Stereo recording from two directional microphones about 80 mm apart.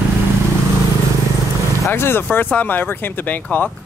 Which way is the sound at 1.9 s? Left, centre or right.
Left.